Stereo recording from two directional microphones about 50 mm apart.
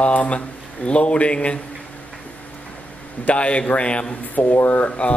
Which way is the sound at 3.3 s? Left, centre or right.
Left.